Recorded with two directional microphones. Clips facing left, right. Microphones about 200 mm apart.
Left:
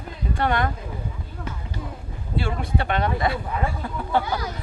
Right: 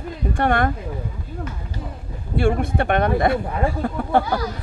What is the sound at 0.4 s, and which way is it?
Speech, 50° right (ahead or behind).